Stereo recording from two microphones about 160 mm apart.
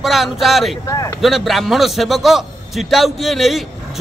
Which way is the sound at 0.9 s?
20° left (ahead or behind).